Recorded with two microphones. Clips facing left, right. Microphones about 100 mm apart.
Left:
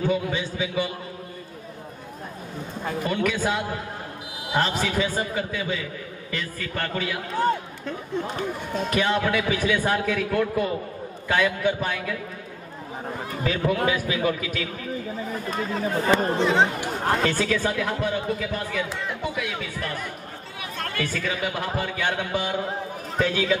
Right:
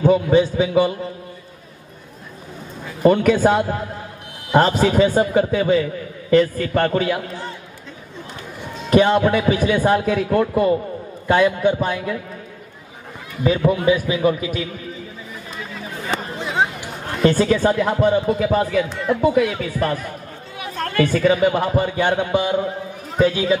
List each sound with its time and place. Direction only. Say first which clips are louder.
0.0 s a man's voice: right 10 dB; 40° right (ahead or behind)
3.0 s a man's voice: right 12 dB; 40° right (ahead or behind)
8.4 s a sound: left 5 dB; 50° left (ahead or behind)
8.9 s a man's voice: right 9 dB; 35° right (ahead or behind)
13.4 s a man's voice: right 6 dB; 20° right (ahead or behind)
15.5 s speech: left 6 dB; 40° left (ahead or behind)
17.3 s a man's voice: right 8 dB; 35° right (ahead or behind)
22.3 s a man's voice: right 7 dB; 20° right (ahead or behind)